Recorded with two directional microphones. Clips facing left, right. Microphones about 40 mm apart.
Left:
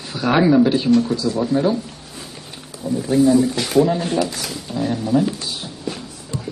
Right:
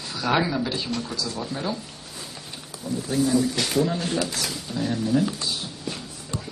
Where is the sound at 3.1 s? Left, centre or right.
Left.